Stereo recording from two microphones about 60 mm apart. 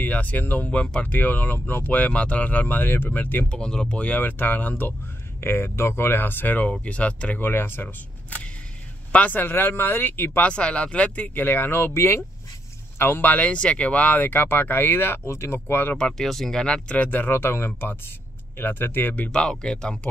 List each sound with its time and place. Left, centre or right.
0.0 s speech: left
3.4 s speech: centre
4.0 s speech: left
7.3 s speech: left
10.5 s speech: centre; by 12.3 s left
13.0 s speech: left
16.0 s speech: centre; by 19.3 s left
19.5 s speech: centre